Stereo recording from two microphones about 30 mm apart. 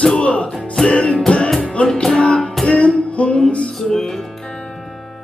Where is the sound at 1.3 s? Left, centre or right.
Left.